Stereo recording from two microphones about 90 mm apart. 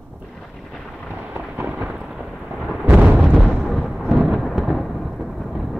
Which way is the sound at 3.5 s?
10° left (ahead or behind).